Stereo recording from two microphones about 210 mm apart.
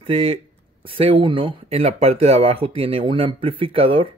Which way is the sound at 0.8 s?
25° right (ahead or behind).